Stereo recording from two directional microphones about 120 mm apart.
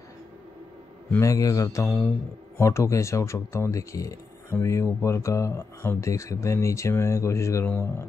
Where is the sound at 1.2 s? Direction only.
30° left (ahead or behind).